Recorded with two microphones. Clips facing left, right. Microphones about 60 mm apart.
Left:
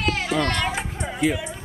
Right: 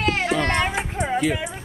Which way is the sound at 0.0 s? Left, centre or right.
Right.